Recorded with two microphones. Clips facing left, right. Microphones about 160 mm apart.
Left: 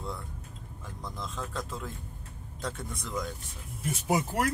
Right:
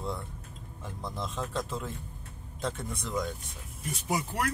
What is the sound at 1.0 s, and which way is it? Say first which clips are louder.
Speech: right 3 dB; 25° right (ahead or behind).